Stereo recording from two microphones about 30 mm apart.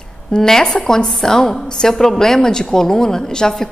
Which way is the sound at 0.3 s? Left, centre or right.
Centre.